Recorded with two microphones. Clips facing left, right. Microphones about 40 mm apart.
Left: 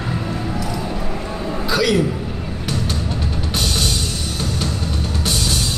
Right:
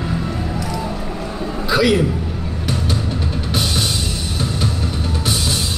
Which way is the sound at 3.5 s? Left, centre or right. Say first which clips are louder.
Right 1 dB; centre.